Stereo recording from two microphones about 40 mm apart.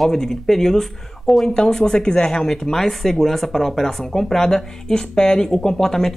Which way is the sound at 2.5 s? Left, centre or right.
Centre.